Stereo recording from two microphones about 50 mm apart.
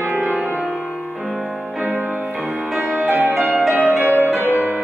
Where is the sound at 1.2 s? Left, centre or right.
Centre.